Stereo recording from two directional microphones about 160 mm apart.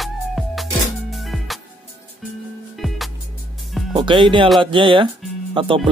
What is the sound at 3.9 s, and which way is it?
Speech, 30° right (ahead or behind).